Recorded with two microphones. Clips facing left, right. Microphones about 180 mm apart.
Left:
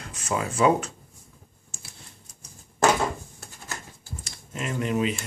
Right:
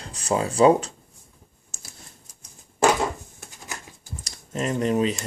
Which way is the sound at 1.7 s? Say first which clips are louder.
Left 1 dB; 40° right (ahead or behind).